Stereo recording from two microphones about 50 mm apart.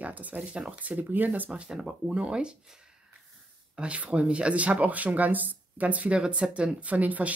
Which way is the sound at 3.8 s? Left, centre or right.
Right.